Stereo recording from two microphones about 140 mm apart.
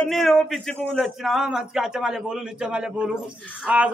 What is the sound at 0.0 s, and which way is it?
A man's voice, centre (ahead or behind).